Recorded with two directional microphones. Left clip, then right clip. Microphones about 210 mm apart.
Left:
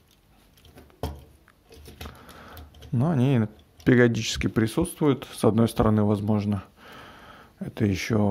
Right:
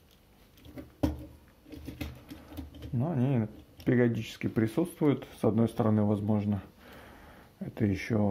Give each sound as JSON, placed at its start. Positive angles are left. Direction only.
{"t": 3.0, "sound": "speech", "side_deg": 45}